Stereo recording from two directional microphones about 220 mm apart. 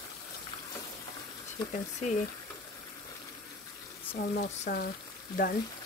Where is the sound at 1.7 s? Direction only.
35° left (ahead or behind).